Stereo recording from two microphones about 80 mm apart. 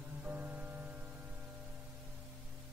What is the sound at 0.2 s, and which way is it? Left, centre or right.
Music, right.